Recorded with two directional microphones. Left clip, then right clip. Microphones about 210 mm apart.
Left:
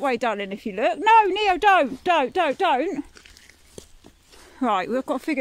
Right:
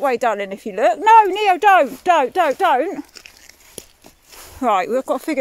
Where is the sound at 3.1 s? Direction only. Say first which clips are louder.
Right 6 dB; 45° right (ahead or behind).